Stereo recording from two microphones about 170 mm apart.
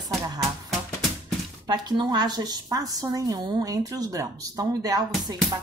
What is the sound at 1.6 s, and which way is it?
A woman's voice, 25° right (ahead or behind).